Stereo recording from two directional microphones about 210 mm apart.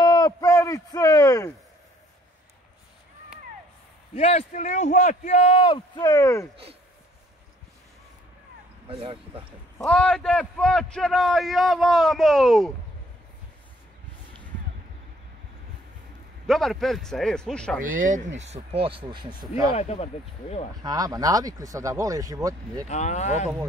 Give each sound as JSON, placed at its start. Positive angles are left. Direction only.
{"t": 0.0, "sound": "a sound", "side_deg": 20}
{"t": 4.1, "sound": "a man's voice", "side_deg": 30}
{"t": 8.8, "sound": "speech", "side_deg": -25}
{"t": 9.8, "sound": "a man's voice", "side_deg": 5}
{"t": 16.4, "sound": "a man's voice", "side_deg": 0}
{"t": 17.8, "sound": "speech", "side_deg": -40}
{"t": 18.5, "sound": "speech", "side_deg": -25}
{"t": 19.7, "sound": "a man's voice", "side_deg": 30}
{"t": 20.8, "sound": "speech", "side_deg": -15}
{"t": 22.8, "sound": "a man's voice", "side_deg": 35}